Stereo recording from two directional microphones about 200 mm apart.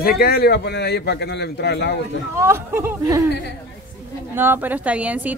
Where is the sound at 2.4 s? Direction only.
15° right (ahead or behind).